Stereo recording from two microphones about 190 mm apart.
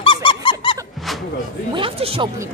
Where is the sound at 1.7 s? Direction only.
30° right (ahead or behind).